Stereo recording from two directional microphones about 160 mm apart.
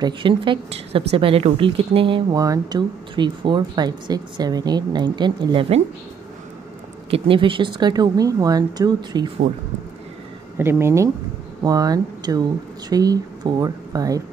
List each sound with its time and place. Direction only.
0.0 s a woman's voice: 30° right (ahead or behind)
7.1 s a woman's voice: 35° right (ahead or behind)
10.6 s a woman's voice: 15° right (ahead or behind)